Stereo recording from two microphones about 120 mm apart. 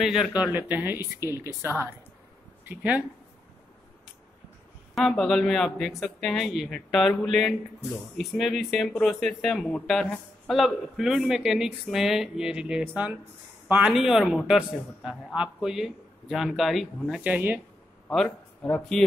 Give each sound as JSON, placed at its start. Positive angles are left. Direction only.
{"t": 0.0, "sound": "speech", "side_deg": -5}
{"t": 4.9, "sound": "speech", "side_deg": 5}
{"t": 17.2, "sound": "speech", "side_deg": -15}
{"t": 18.1, "sound": "speech", "side_deg": 5}